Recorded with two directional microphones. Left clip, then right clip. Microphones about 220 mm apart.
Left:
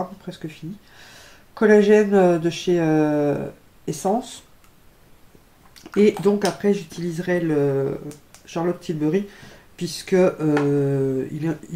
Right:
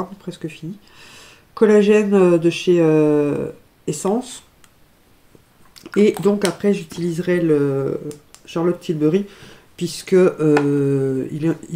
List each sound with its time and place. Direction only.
0.3 s speech: 20° right (ahead or behind)
5.9 s speech: 25° right (ahead or behind)